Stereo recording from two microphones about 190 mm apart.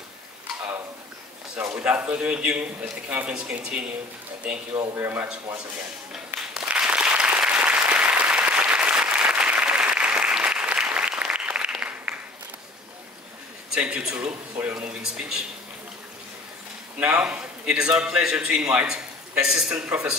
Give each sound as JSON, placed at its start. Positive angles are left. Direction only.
{"t": 1.6, "sound": "a man's voice", "side_deg": -5}
{"t": 6.1, "sound": "applause", "side_deg": -5}
{"t": 13.7, "sound": "a man's voice", "side_deg": -5}
{"t": 17.0, "sound": "a man's voice", "side_deg": -5}